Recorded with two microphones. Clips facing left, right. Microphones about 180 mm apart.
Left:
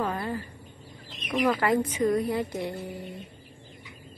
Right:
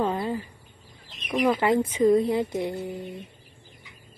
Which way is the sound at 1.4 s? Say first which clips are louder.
Right 2 dB; 20° right (ahead or behind).